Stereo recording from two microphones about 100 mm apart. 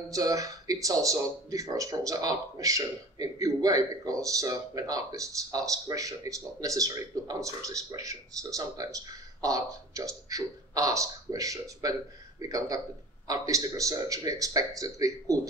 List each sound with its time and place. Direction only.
0.1 s speech: 35° right (ahead or behind)